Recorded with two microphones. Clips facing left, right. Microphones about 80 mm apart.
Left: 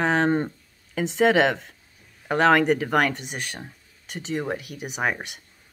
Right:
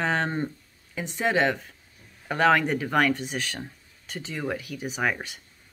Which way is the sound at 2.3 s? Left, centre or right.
Left.